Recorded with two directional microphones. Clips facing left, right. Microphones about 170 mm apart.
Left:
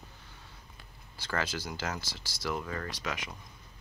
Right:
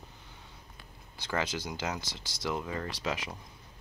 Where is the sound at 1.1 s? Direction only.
20° right (ahead or behind).